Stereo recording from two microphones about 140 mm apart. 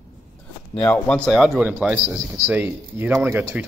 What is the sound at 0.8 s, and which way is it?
Speech, 10° left (ahead or behind).